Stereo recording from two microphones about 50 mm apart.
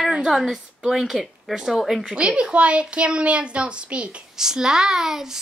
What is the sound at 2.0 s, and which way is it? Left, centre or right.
Speech, centre.